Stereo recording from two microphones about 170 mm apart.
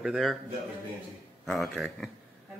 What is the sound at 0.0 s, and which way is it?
Speech, centre (ahead or behind).